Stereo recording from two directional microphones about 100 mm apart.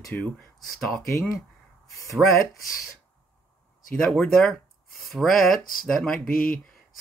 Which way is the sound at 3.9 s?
10° left (ahead or behind).